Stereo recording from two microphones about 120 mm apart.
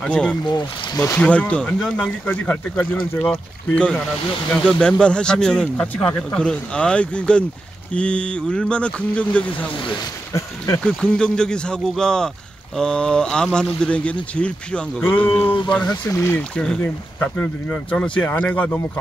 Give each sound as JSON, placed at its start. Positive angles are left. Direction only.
{"t": 0.0, "sound": "speech", "side_deg": 10}
{"t": 0.5, "sound": "speech", "side_deg": 30}
{"t": 1.2, "sound": "speech", "side_deg": 10}
{"t": 10.8, "sound": "speech", "side_deg": 10}
{"t": 15.9, "sound": "speech", "side_deg": 25}
{"t": 16.3, "sound": "speech", "side_deg": 10}